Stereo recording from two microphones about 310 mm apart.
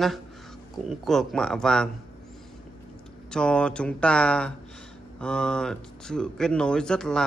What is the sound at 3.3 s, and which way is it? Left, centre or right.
A man's voice, centre.